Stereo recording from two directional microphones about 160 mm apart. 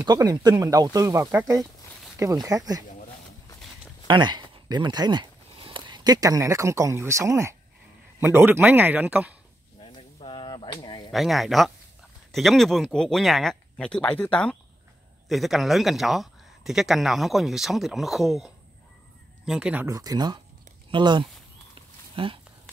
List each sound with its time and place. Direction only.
0.0 s speech: 25° right (ahead or behind)
4.1 s speech: 30° right (ahead or behind); by 9.3 s 10° right (ahead or behind)
9.8 s a sound: 30° left (ahead or behind)
11.1 s speech: centre (ahead or behind)
19.9 s speech: 25° right (ahead or behind)